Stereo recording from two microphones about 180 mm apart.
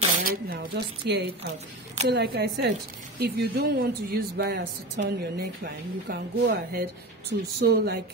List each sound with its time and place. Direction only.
0.2 s speech: 65° right (ahead or behind)
7.6 s speech: 60° right (ahead or behind)